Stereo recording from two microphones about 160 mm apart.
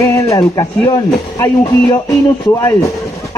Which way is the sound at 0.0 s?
20° left (ahead or behind).